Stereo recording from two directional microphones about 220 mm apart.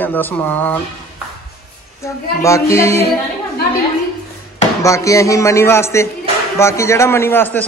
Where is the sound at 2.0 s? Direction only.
15° left (ahead or behind).